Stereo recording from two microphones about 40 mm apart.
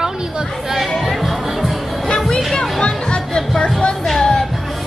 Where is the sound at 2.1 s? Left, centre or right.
Centre.